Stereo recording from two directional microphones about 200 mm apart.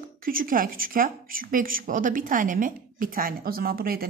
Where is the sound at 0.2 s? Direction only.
45° right (ahead or behind).